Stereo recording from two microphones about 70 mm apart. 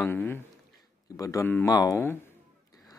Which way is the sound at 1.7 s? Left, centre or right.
Left.